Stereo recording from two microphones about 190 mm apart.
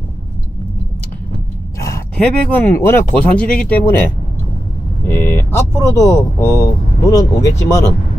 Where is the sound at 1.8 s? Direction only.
10° left (ahead or behind).